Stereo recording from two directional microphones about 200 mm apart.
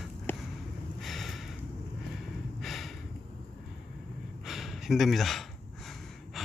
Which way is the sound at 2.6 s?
Centre (ahead or behind).